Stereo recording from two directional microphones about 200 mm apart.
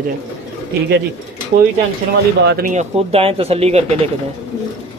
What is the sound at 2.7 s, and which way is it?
Speech, 35° right (ahead or behind).